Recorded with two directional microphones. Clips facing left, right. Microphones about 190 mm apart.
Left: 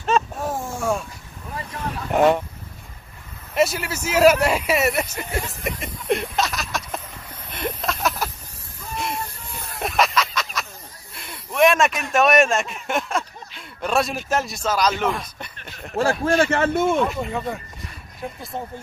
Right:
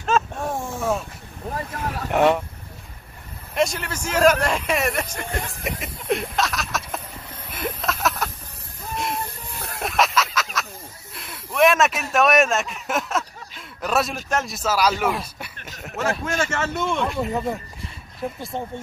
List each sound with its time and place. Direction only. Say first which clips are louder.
0.0 s a sound: left 1 dB; centre (ahead or behind)
2.0 s speech: left 1 dB; centre (ahead or behind)
3.5 s a man's voice: left 2 dB; 5° left (ahead or behind)
7.5 s a sound: left 1 dB; centre (ahead or behind)
8.9 s hiss: right 1 dB; centre (ahead or behind)
9.8 s a sound: left 1 dB; centre (ahead or behind)
14.3 s speech: even; centre (ahead or behind)
15.9 s speech: left 5 dB; 30° left (ahead or behind)
16.3 s speech: left 6 dB; 55° left (ahead or behind)
17.0 s speech: even; centre (ahead or behind)